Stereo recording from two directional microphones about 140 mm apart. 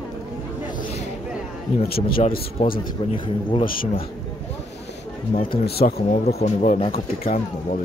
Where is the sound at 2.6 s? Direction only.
50° left (ahead or behind).